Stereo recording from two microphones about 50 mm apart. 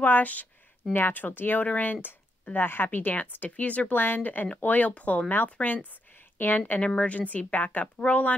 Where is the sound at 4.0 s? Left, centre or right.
Left.